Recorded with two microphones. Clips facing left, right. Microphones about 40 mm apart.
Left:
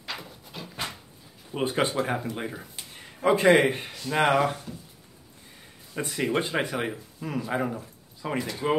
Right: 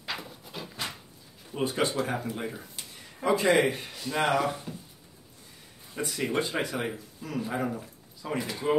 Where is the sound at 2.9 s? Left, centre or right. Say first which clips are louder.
Left 3 dB; left.